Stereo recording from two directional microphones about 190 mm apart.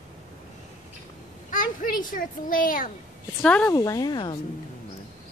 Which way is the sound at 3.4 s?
10° left (ahead or behind).